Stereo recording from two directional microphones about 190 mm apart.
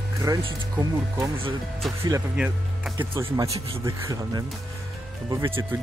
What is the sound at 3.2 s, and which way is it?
Speech, 15° right (ahead or behind).